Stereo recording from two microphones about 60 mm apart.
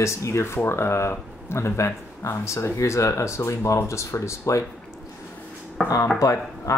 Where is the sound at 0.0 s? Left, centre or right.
Left.